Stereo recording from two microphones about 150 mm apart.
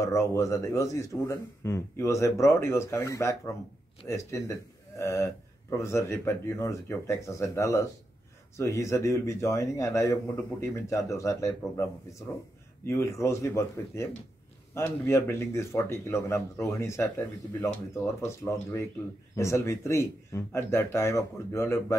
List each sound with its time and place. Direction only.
0.0 s speech: 20° left (ahead or behind)